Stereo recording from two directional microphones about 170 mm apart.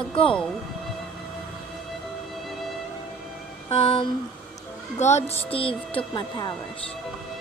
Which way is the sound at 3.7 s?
35° left (ahead or behind).